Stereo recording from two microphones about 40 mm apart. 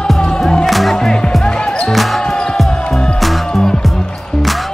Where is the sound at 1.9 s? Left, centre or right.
Centre.